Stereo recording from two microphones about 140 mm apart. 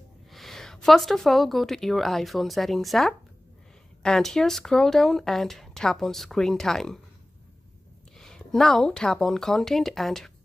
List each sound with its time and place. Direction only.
0.3 s speech: centre (ahead or behind)
8.2 s speech: 5° left (ahead or behind)